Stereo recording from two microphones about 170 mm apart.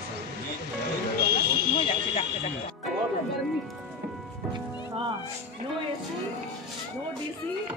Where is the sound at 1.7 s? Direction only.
30° left (ahead or behind).